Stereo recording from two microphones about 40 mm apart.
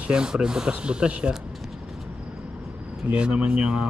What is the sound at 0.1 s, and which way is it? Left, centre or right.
Speech, centre.